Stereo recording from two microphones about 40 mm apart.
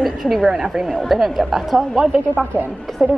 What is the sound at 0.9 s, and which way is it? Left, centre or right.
Speech, centre.